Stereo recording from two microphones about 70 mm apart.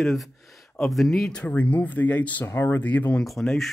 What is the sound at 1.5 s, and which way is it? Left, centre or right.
Speech, left.